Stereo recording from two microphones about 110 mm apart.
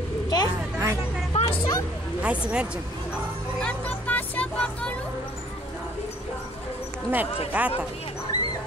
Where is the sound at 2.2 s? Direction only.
10° right (ahead or behind).